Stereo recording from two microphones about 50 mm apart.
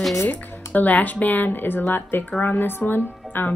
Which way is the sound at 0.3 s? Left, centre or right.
Left.